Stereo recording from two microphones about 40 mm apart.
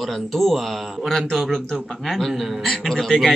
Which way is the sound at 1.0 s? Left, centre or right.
Centre.